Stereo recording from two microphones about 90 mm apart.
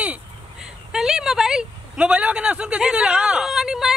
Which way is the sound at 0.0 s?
15° right (ahead or behind).